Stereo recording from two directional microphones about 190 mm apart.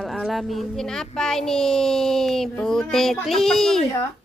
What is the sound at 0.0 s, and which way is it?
Speech, centre (ahead or behind).